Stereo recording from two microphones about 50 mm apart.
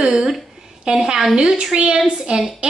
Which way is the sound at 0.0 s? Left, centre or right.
Centre.